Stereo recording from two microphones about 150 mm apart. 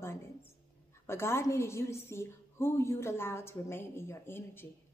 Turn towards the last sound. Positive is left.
turn(degrees=15)  # may be behind; listen again after turning